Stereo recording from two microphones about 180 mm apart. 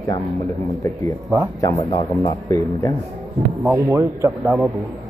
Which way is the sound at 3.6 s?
15° right (ahead or behind).